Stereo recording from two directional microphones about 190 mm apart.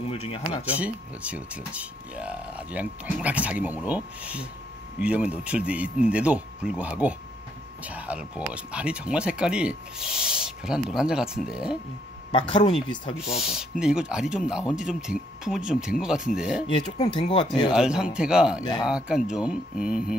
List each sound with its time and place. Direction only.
0.1 s speech: 30° left (ahead or behind)
0.7 s speech: 5° right (ahead or behind)
12.3 s speech: 25° left (ahead or behind)
13.3 s speech: 5° right (ahead or behind)
16.6 s speech: 25° left (ahead or behind)
17.7 s speech: 5° right (ahead or behind)
18.6 s speech: 20° left (ahead or behind)
18.9 s speech: 5° right (ahead or behind)